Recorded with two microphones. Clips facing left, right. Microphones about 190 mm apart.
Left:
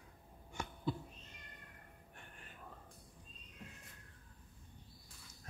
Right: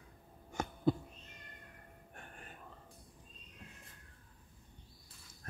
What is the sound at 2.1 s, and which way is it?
Whispering, 45° right (ahead or behind).